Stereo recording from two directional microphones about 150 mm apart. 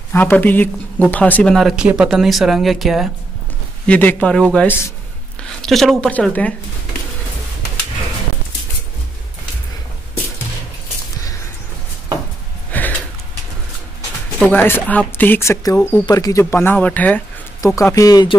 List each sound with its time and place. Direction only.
0.1 s speech: 15° left (ahead or behind)
3.8 s speech: 10° left (ahead or behind)
12.7 s a sound: 10° left (ahead or behind)
14.4 s speech: 10° left (ahead or behind)